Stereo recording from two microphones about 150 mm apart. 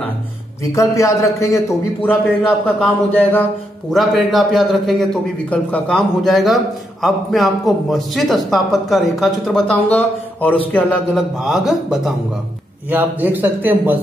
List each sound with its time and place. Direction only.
0.7 s a man's voice: 20° left (ahead or behind)
2.8 s a sound: 10° left (ahead or behind)
3.9 s a man's voice: centre (ahead or behind)
10.7 s a man's voice: centre (ahead or behind)
12.9 s a man's voice: 10° right (ahead or behind)